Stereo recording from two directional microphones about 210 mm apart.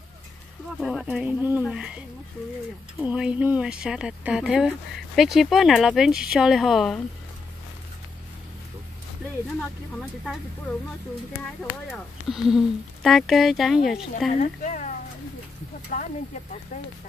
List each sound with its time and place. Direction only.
0.7 s speech: centre (ahead or behind)
9.6 s speech: 5° left (ahead or behind)
11.6 s speech: centre (ahead or behind)
14.3 s speech: 35° left (ahead or behind)